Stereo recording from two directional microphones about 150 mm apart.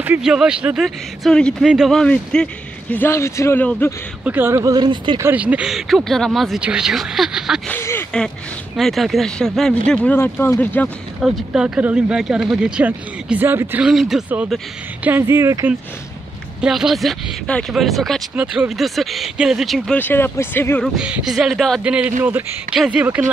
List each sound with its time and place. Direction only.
0.0 s a man's voice: 10° right (ahead or behind); by 3.9 s 15° left (ahead or behind)
4.2 s speech: 10° right (ahead or behind); by 5.2 s 30° right (ahead or behind)
5.2 s speech: 10° right (ahead or behind)
7.7 s a sound: 15° left (ahead or behind)
8.7 s a man's voice: centre (ahead or behind)
11.1 s speech: 5° right (ahead or behind)
15.0 s speech: 15° right (ahead or behind)
16.6 s speech: 5° right (ahead or behind)
20.0 s a man's voice: 15° left (ahead or behind)
20.8 s speech: 5° right (ahead or behind)